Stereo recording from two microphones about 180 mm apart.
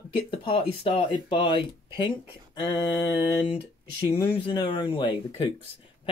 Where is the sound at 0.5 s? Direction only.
30° left (ahead or behind).